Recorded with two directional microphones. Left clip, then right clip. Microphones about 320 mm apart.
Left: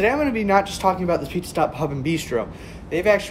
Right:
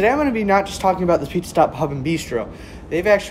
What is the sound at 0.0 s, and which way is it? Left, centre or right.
Speech, centre.